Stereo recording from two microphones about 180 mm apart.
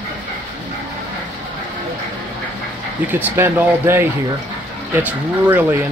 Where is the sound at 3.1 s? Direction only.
10° right (ahead or behind).